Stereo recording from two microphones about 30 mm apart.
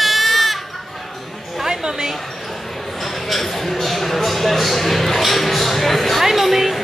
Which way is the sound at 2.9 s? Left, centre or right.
Centre.